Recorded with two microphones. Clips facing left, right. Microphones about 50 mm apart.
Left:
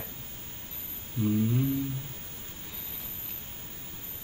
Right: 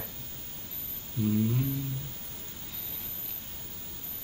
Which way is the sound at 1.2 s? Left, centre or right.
Left.